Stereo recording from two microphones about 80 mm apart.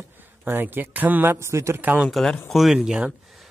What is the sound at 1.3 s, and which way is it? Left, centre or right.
Speech, right.